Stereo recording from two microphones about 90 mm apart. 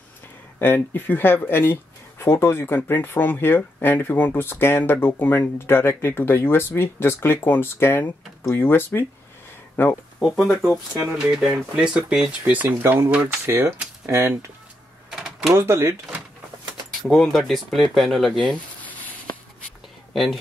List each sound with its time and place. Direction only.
0.6 s speech: 25° left (ahead or behind)
10.2 s speech: 5° right (ahead or behind)
12.8 s speech: 25° right (ahead or behind)
13.1 s speech: 15° right (ahead or behind)
13.5 s speech: 30° right (ahead or behind)
15.0 s typewriter: 5° right (ahead or behind)
15.5 s speech: 30° right (ahead or behind)
17.1 s speech: 5° left (ahead or behind)
18.4 s a sound: 15° left (ahead or behind)
20.1 s a sound: centre (ahead or behind)